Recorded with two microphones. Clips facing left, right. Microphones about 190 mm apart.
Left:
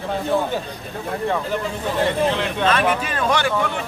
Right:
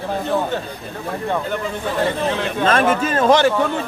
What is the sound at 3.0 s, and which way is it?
Speech, 40° right (ahead or behind).